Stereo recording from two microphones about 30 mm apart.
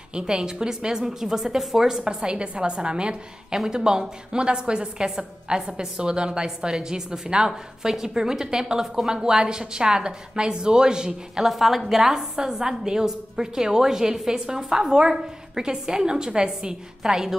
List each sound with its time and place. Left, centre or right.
0.2 s a woman's voice: right
2.0 s a woman's voice: right
3.5 s a woman's voice: right
11.4 s a woman's voice: centre